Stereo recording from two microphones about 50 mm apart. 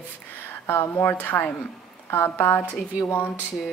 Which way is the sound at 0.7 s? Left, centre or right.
Left.